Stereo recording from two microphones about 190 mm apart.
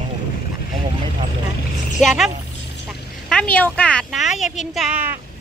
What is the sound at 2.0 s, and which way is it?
Speech, centre (ahead or behind).